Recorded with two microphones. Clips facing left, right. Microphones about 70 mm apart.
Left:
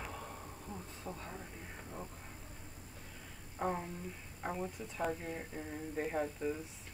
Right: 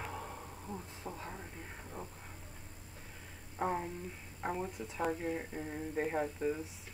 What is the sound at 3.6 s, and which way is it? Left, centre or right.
Speech, centre.